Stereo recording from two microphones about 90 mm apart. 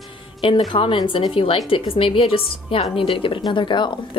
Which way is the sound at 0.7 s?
75° left (ahead or behind).